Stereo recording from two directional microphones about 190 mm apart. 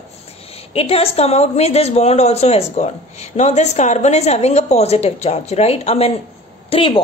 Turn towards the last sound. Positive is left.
turn(degrees=30)  # may be behind; listen again after turning